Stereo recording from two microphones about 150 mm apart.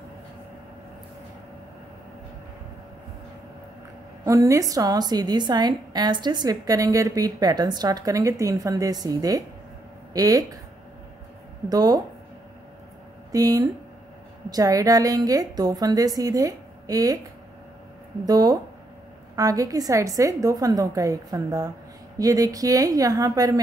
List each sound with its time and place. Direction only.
4.2 s a woman's voice: 20° right (ahead or behind)
11.7 s a woman's voice: 25° right (ahead or behind)
13.3 s a woman's voice: 25° right (ahead or behind)
18.2 s a woman's voice: 25° right (ahead or behind)